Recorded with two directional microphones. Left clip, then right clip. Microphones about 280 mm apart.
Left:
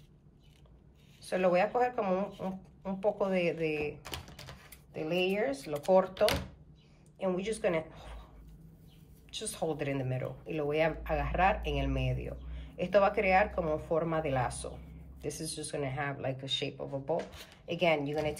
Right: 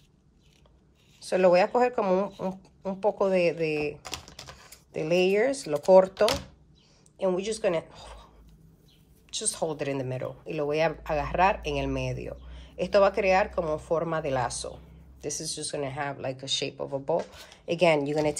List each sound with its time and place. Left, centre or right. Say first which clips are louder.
1.2 s a woman's voice: right 7 dB; centre
9.3 s speech: right 5 dB; centre